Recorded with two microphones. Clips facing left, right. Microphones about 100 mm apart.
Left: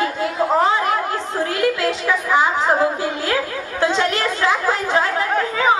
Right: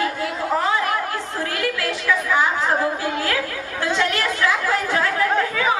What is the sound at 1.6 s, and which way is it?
Speech, 20° left (ahead or behind).